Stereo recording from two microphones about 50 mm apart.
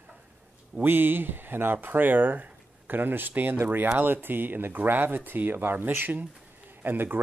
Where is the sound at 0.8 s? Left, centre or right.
Right.